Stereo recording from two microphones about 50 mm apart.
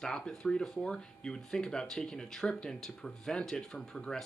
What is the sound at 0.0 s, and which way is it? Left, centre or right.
Speech, centre.